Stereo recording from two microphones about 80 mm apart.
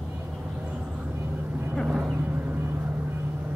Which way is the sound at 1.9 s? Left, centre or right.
Centre.